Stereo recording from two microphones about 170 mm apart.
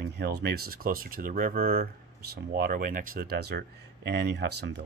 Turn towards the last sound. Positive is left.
turn(degrees=-85)